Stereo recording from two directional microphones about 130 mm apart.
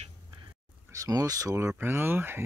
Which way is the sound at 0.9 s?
25° right (ahead or behind).